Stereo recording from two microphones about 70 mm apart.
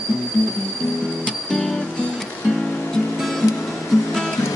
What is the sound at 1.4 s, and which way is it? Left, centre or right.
Music, centre.